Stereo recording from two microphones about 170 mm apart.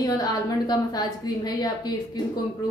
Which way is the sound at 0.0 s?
20° left (ahead or behind).